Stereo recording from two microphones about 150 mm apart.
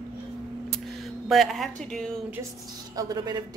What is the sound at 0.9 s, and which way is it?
Speech, centre (ahead or behind).